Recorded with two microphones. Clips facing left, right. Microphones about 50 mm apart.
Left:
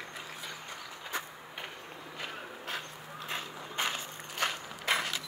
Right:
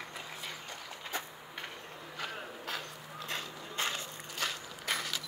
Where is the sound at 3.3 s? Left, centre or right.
Left.